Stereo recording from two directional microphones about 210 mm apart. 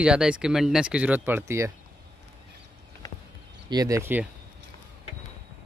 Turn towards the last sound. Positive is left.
turn(degrees=-10)  # may be behind; listen again after turning